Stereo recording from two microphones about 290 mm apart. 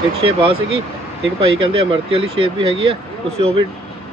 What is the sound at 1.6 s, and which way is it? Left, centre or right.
Speech, centre.